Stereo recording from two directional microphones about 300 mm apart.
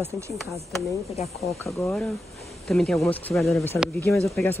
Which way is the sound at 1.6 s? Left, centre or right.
Centre.